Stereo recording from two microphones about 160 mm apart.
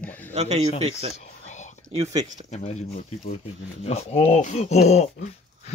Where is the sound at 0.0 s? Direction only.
10° left (ahead or behind).